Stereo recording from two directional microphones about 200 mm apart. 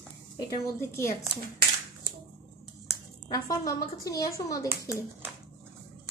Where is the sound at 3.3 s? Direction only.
15° left (ahead or behind).